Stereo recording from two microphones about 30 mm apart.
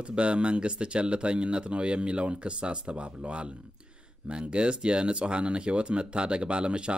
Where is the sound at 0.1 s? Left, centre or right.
Right.